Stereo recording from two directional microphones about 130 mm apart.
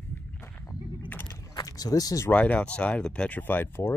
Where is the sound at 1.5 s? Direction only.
30° left (ahead or behind).